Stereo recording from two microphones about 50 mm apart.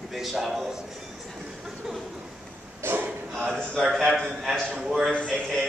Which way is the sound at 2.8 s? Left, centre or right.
Right.